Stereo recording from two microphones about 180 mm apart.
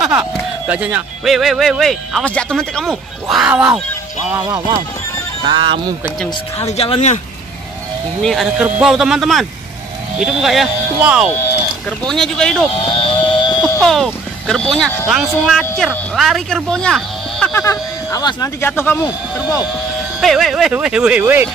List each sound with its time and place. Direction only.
0.0 s speech: 5° right (ahead or behind)
5.4 s speech: 25° right (ahead or behind)
6.6 s speech: 35° left (ahead or behind)
8.2 s speech: centre (ahead or behind)
12.8 s a sound: 30° left (ahead or behind)
13.7 s speech: centre (ahead or behind)
17.5 s speech: 15° left (ahead or behind)
20.2 s speech: centre (ahead or behind)